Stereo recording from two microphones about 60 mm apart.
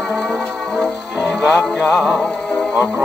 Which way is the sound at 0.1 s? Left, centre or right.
Centre.